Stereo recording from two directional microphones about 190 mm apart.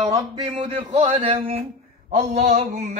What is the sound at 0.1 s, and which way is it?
Speech, 20° right (ahead or behind).